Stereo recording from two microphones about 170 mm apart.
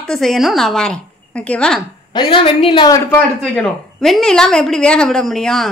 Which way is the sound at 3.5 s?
5° left (ahead or behind).